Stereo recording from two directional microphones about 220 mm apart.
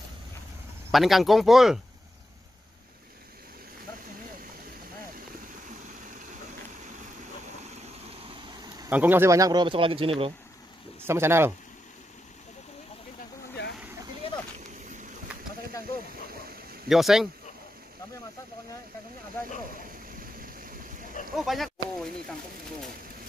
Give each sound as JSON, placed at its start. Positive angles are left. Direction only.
{"t": 0.9, "sound": "speech", "side_deg": 0}
{"t": 8.3, "sound": "speech", "side_deg": -15}
{"t": 11.0, "sound": "speech", "side_deg": -10}
{"t": 13.6, "sound": "vehicle", "side_deg": 50}
{"t": 14.2, "sound": "a sound", "side_deg": 25}
{"t": 16.9, "sound": "speech", "side_deg": 0}
{"t": 21.4, "sound": "speech", "side_deg": 0}